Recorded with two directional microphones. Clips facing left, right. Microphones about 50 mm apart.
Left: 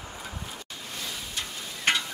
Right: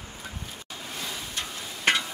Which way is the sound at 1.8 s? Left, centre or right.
Centre.